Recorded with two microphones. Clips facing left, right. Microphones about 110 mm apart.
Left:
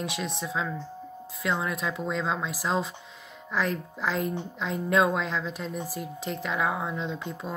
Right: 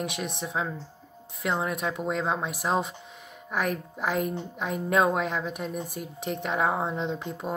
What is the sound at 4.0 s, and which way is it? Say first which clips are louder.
A woman's voice: right 1 dB; 15° right (ahead or behind).